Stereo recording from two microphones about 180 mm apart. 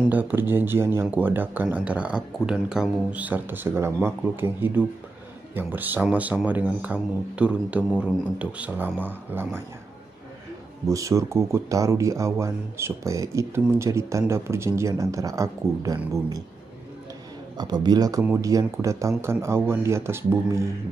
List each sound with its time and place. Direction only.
0.1 s speech: 10° right (ahead or behind)
10.9 s speech: 15° right (ahead or behind)
17.6 s speech: 25° right (ahead or behind)